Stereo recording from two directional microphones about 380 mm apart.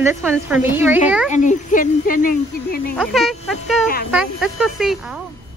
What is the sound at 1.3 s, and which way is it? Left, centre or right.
Speech, centre.